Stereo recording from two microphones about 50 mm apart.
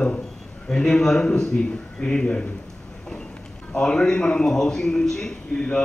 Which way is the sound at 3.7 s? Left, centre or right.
Centre.